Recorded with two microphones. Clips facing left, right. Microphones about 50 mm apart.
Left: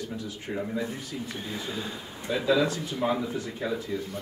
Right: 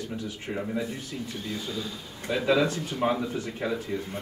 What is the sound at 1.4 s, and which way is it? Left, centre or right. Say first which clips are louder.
Speech: right 2 dB; left.